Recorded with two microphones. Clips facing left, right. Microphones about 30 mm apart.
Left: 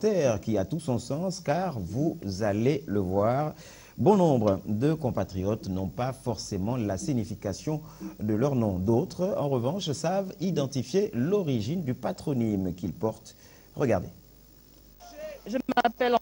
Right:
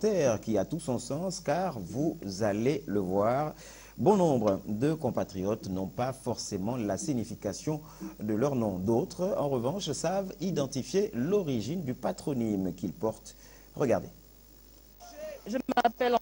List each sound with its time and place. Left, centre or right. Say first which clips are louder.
0.0 s speech: left 2 dB; centre
15.1 s speech: left 2 dB; centre